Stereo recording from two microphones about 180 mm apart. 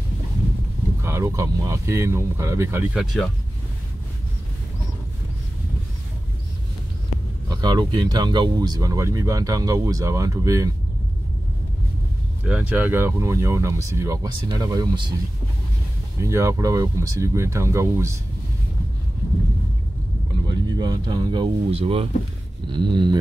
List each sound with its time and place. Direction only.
1.0 s speech: 15° right (ahead or behind)
7.4 s speech: 20° right (ahead or behind)
12.4 s speech: 10° right (ahead or behind)
16.2 s speech: 15° right (ahead or behind)
20.4 s speech: 25° right (ahead or behind)